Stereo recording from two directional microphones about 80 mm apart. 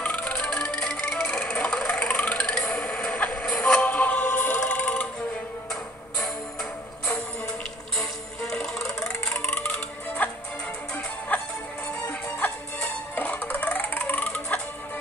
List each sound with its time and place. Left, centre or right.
0.0 s music: centre
9.4 s music: left
12.1 s music: centre